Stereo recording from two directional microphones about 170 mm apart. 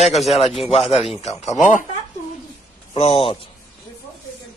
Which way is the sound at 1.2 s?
40° left (ahead or behind).